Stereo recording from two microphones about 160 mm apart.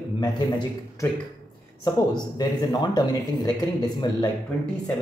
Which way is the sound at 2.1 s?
25° left (ahead or behind).